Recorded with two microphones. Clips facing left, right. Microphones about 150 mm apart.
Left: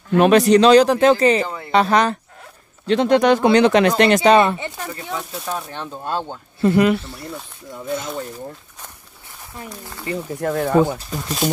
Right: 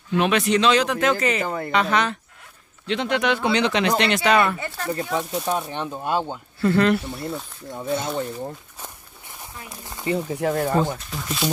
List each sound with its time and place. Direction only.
0.1 s speech: 40° left (ahead or behind)
4.4 s speech: 25° left (ahead or behind)
5.3 s speech: 15° right (ahead or behind)
6.6 s speech: 15° left (ahead or behind)
7.0 s speech: 20° right (ahead or behind)
7.7 s speech: 35° right (ahead or behind)
9.8 s speech: 20° right (ahead or behind)
10.4 s speech: 5° right (ahead or behind)
11.2 s speech: 45° left (ahead or behind)